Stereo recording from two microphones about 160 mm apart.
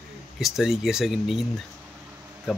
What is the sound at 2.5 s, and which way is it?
Speech, 5° right (ahead or behind).